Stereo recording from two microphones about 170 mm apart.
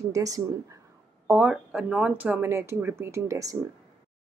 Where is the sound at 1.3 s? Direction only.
10° right (ahead or behind).